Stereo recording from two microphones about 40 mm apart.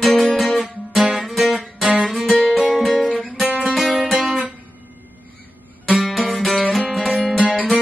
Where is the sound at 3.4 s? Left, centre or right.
Right.